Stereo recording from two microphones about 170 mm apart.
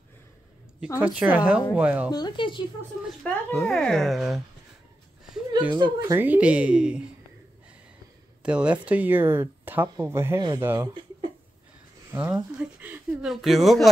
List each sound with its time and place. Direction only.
0.9 s speech: 10° right (ahead or behind)
2.0 s speech: 25° left (ahead or behind)
3.4 s speech: 5° left (ahead or behind)
5.7 s speech: 25° right (ahead or behind)
6.1 s speech: 10° right (ahead or behind)
8.4 s speech: 5° right (ahead or behind)
12.1 s speech: 10° right (ahead or behind)